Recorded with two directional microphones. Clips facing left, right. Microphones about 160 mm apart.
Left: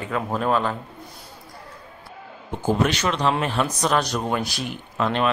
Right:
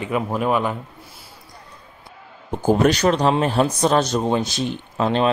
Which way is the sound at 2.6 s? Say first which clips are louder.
Right 5 dB; 40° right (ahead or behind).